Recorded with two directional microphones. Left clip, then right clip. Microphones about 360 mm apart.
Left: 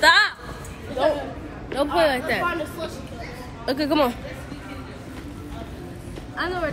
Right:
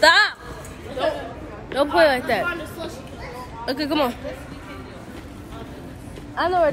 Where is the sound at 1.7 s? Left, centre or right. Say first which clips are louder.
Right 3 dB; centre.